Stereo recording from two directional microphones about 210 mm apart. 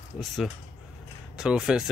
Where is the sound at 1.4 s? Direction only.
5° right (ahead or behind).